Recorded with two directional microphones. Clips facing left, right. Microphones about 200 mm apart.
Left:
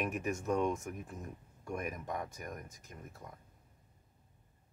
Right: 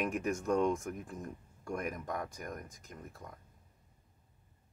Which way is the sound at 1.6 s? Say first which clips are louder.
Right 2 dB; 25° left (ahead or behind).